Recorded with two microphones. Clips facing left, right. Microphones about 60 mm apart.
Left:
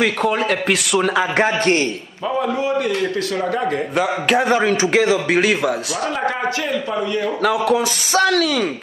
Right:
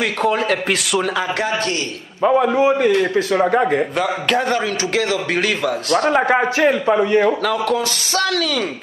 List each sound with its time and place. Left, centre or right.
0.0 s a man's voice: centre
2.2 s a man's voice: right
2.5 s a man's voice: right
3.9 s a man's voice: centre
6.3 s a man's voice: right
7.4 s a man's voice: centre